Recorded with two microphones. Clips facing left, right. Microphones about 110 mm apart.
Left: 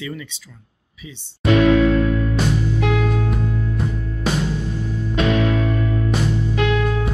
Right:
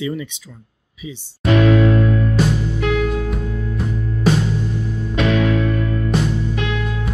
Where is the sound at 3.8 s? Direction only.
Centre (ahead or behind).